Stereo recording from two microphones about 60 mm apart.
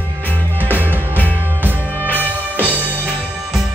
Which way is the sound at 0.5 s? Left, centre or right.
Right.